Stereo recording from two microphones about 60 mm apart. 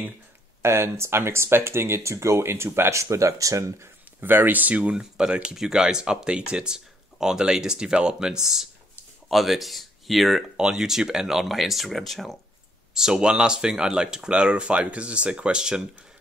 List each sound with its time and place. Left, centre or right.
0.6 s speech: right
4.2 s speech: right
4.9 s speech: centre
12.9 s speech: centre